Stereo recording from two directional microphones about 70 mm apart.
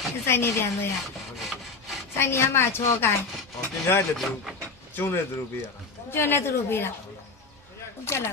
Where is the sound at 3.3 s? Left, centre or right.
Centre.